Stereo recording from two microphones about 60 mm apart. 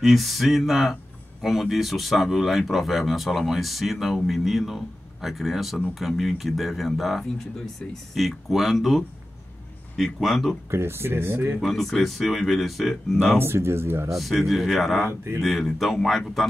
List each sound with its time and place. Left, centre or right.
0.0 s speech: centre
10.7 s speech: right
11.6 s speech: centre
13.4 s speech: right
14.1 s speech: centre